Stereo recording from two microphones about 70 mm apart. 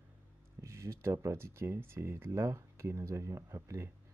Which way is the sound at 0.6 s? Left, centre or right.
Right.